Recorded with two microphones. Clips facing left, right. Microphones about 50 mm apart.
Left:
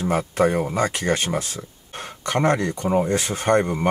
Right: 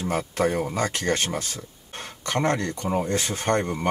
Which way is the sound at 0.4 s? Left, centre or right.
Centre.